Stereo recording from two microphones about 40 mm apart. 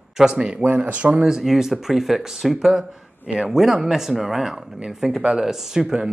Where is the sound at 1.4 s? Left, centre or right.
Centre.